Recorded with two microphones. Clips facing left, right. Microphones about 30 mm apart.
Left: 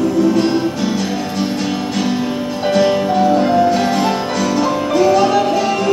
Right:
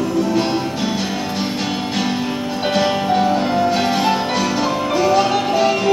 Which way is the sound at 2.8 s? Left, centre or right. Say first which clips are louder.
Left 3 dB; centre.